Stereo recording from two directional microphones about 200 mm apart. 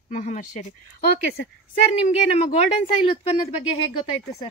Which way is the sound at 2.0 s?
35° left (ahead or behind).